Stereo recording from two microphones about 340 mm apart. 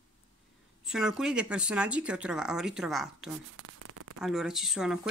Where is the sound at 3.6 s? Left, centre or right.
Right.